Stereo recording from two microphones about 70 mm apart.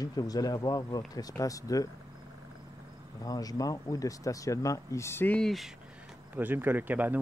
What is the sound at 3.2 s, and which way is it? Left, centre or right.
Speech, left.